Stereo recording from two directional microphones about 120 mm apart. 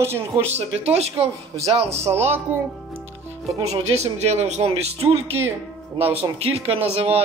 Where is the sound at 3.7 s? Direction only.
65° right (ahead or behind).